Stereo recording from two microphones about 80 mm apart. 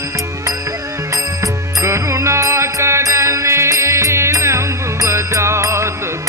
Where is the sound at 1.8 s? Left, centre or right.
Right.